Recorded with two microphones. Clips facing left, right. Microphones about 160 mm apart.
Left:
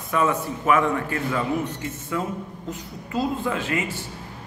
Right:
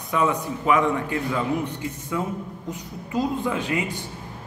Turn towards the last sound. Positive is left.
turn(degrees=-15)  # may be behind; listen again after turning